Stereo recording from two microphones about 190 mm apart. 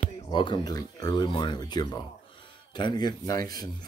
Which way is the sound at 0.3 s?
25° left (ahead or behind).